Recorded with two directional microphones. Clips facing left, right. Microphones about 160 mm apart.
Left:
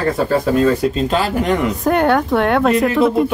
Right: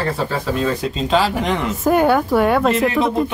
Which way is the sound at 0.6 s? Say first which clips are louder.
Left 6 dB; 5° left (ahead or behind).